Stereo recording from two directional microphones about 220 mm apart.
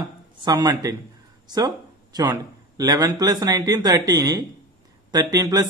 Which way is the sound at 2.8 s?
15° right (ahead or behind).